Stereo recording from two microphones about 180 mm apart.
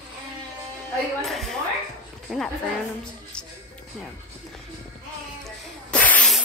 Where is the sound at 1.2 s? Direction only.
Centre (ahead or behind).